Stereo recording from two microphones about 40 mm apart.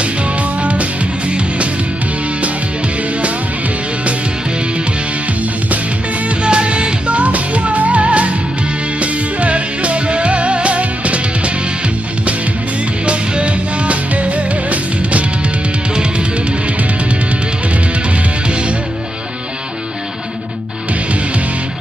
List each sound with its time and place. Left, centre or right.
0.0 s music: right
6.2 s music: right
13.0 s music: right
18.5 s music: right